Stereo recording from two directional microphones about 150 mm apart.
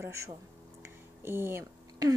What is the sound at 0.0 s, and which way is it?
Speech, 20° right (ahead or behind).